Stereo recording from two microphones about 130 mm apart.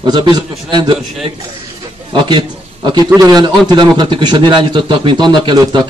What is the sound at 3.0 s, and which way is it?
A man's voice, 30° right (ahead or behind).